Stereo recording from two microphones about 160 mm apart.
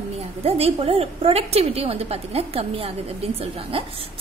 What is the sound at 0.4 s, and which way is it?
A woman's voice, 40° right (ahead or behind).